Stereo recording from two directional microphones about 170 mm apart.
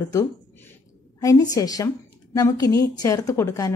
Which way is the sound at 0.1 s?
15° left (ahead or behind).